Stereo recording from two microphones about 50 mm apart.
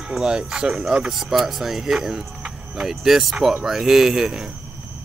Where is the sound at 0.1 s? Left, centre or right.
Centre.